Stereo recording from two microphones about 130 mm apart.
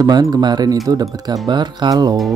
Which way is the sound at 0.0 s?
30° right (ahead or behind).